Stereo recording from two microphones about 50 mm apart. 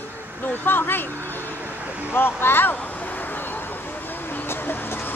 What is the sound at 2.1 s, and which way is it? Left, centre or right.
Speech, left.